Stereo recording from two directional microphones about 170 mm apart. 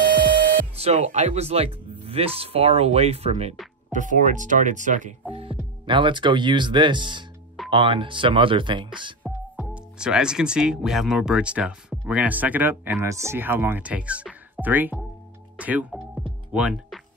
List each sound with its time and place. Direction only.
0.7 s speech: 40° right (ahead or behind)
5.3 s speech: 35° right (ahead or behind)
9.9 s speech: 5° right (ahead or behind)
15.5 s music: 10° right (ahead or behind)
16.5 s speech: 5° right (ahead or behind)